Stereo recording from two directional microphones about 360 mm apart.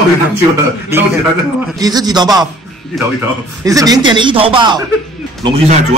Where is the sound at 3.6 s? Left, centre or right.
Centre.